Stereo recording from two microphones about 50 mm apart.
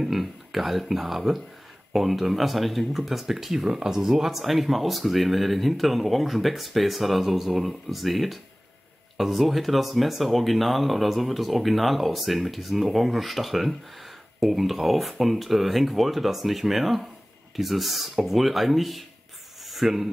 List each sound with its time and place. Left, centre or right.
0.0 s speech: centre